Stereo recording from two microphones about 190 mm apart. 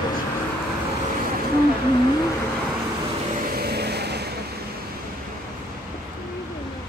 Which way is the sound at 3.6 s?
55° right (ahead or behind).